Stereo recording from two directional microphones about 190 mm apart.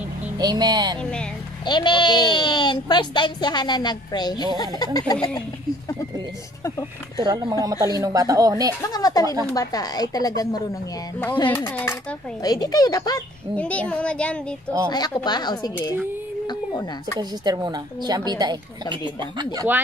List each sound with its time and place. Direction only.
0.4 s a woman's voice: 20° right (ahead or behind)
1.7 s a woman's voice: 25° left (ahead or behind)
7.2 s a woman's voice: 25° right (ahead or behind)
8.8 s a woman's voice: 20° left (ahead or behind)
11.7 s a child's voice: 10° left (ahead or behind)
13.6 s speech: 5° left (ahead or behind)
14.9 s a woman's voice: 20° left (ahead or behind)
17.2 s a woman's voice: 20° right (ahead or behind)